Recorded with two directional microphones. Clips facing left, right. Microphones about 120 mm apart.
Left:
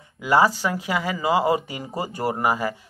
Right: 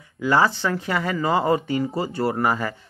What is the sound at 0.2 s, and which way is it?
Speech, 15° left (ahead or behind).